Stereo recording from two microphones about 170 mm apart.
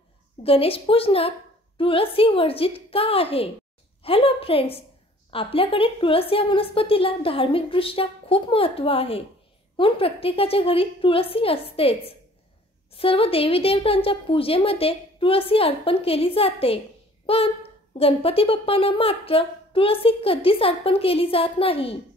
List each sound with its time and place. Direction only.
0.4 s a woman's voice: 35° left (ahead or behind)